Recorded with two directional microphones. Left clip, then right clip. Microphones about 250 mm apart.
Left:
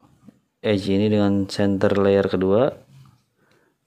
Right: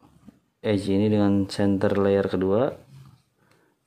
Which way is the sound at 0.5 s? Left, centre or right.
Centre.